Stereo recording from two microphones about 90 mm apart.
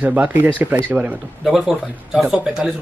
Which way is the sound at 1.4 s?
5° right (ahead or behind).